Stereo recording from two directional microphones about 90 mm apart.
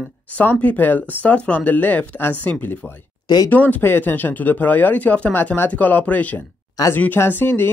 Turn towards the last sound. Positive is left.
turn(degrees=20)  # may be behind; listen again after turning